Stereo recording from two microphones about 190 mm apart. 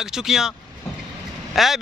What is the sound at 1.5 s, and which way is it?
Speech, centre (ahead or behind).